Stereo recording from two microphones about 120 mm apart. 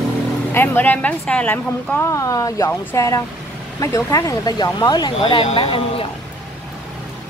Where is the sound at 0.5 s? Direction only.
15° left (ahead or behind).